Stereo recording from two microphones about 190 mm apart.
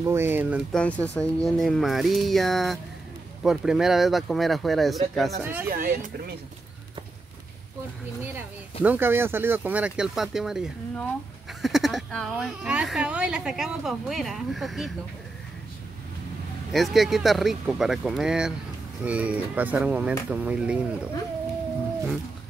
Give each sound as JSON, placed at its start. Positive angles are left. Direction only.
{"t": 0.0, "sound": "speech", "side_deg": -15}
{"t": 0.7, "sound": "speech", "side_deg": 5}
{"t": 5.7, "sound": "speech", "side_deg": -50}
{"t": 8.8, "sound": "speech", "side_deg": -10}
{"t": 16.7, "sound": "speech", "side_deg": 0}